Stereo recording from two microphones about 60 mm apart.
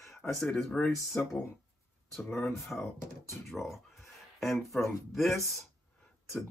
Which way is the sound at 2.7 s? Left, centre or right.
Centre.